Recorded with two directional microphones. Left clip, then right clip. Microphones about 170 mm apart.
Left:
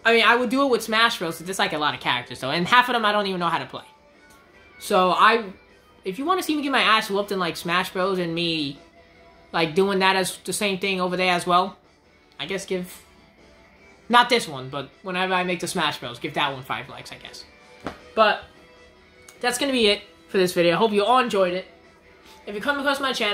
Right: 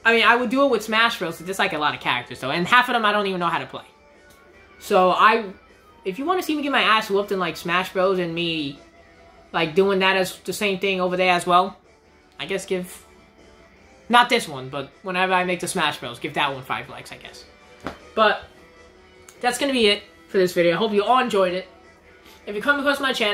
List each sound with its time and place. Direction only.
0.0 s speech: 15° left (ahead or behind)
14.0 s speech: 10° left (ahead or behind)
19.4 s speech: 10° left (ahead or behind)
20.3 s speech: 25° left (ahead or behind)
21.3 s a man's voice: 5° left (ahead or behind)